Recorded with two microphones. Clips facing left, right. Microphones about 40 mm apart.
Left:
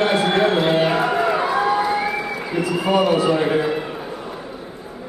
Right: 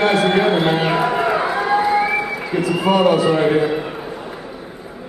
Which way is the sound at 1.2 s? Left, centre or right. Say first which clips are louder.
Right 1 dB; centre.